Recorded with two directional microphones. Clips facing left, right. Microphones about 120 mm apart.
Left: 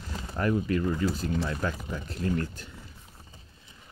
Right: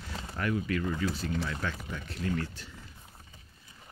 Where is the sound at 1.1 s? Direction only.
45° left (ahead or behind).